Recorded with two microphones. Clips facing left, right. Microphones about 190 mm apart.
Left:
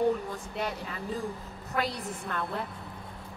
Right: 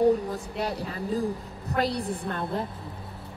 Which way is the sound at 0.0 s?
35° right (ahead or behind).